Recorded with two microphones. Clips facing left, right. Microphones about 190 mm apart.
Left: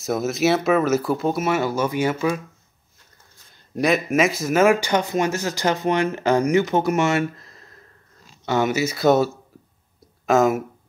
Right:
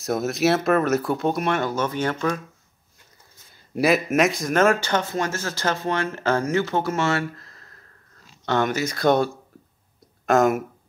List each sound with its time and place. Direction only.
0.0 s speech: centre (ahead or behind)
3.7 s speech: 5° right (ahead or behind); by 7.7 s 20° left (ahead or behind)
8.5 s speech: 10° left (ahead or behind)